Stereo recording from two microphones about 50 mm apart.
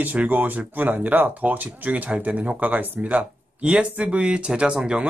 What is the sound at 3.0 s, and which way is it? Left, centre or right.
Speech, right.